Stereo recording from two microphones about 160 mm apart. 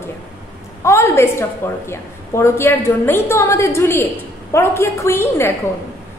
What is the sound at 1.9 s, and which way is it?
A woman's voice, 15° left (ahead or behind).